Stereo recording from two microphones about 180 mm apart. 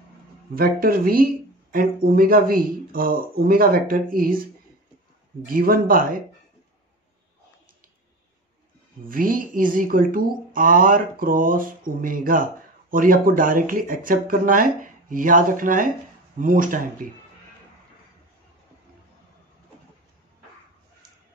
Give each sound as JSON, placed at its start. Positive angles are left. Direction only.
{"t": 0.6, "sound": "speech", "side_deg": -55}
{"t": 5.4, "sound": "speech", "side_deg": -55}
{"t": 9.1, "sound": "speech", "side_deg": -50}